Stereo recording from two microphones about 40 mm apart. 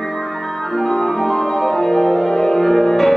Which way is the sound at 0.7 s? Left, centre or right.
Centre.